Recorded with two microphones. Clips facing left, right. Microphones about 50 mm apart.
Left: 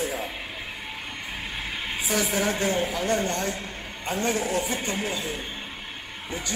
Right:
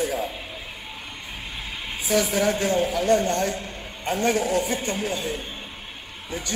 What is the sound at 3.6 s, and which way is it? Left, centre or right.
Speech, right.